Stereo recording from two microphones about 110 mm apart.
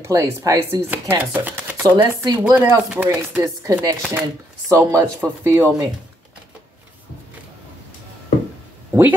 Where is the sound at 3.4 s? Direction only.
30° right (ahead or behind).